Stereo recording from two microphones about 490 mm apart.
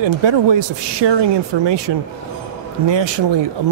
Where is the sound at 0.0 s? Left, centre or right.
Right.